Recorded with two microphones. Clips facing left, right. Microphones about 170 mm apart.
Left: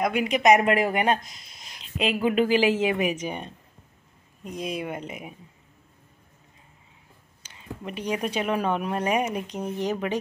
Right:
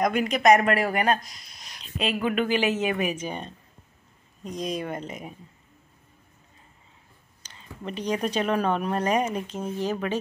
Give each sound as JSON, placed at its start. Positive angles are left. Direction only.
{"t": 0.0, "sound": "speech", "side_deg": 10}
{"t": 7.4, "sound": "a sound", "side_deg": 10}
{"t": 7.8, "sound": "speech", "side_deg": 10}